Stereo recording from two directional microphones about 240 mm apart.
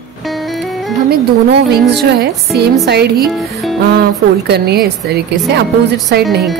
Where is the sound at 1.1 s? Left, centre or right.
Right.